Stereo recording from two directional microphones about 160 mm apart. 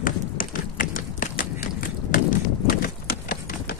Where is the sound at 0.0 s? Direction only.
60° left (ahead or behind).